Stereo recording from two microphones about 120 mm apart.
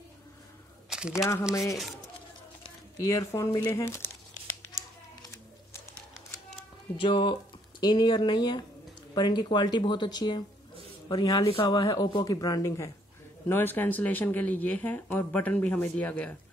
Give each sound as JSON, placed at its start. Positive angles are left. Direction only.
{"t": 0.8, "sound": "a sound", "side_deg": -5}
{"t": 1.1, "sound": "speech", "side_deg": 25}
{"t": 3.0, "sound": "speech", "side_deg": 25}
{"t": 5.2, "sound": "a sound", "side_deg": 25}
{"t": 7.0, "sound": "speech", "side_deg": 45}
{"t": 11.4, "sound": "speech", "side_deg": 45}
{"t": 11.8, "sound": "speech", "side_deg": 35}
{"t": 13.5, "sound": "speech", "side_deg": 15}